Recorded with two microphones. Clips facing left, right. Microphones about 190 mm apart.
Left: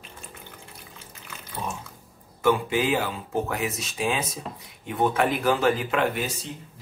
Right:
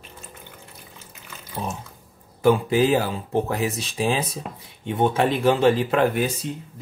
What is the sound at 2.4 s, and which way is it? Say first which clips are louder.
Speech: right 4 dB; 35° right (ahead or behind).